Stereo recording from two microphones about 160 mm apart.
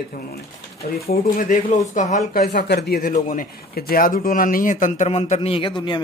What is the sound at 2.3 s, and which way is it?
Speech, 75° left (ahead or behind).